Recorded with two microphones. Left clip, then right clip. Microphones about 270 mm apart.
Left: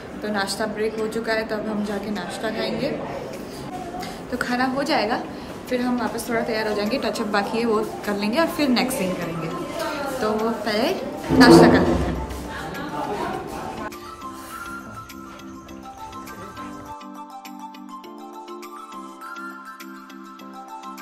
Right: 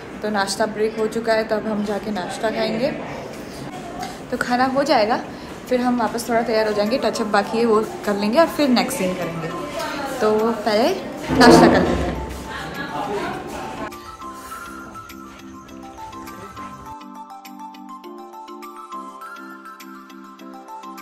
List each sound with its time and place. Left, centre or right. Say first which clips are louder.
0.2 s a woman's voice: right 4 dB; centre
4.0 s a woman's voice: right 4 dB; centre